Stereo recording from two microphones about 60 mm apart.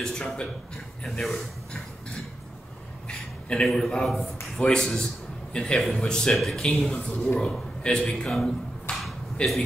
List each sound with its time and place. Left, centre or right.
0.0 s a man's voice: centre
3.1 s a sound: centre
3.7 s a man's voice: centre
6.3 s a man's voice: centre
6.6 s speech: centre
7.2 s a man's voice: centre
8.9 s a sound: centre
9.4 s speech: centre